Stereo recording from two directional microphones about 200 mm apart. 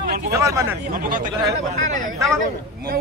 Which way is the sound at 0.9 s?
45° right (ahead or behind).